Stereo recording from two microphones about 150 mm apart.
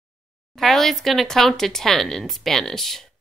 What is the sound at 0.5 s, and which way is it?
Speech, centre (ahead or behind).